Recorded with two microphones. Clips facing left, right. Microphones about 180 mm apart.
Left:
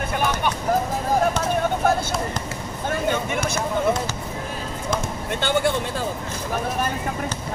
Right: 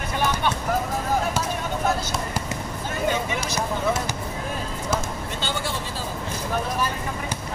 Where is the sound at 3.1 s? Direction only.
55° left (ahead or behind).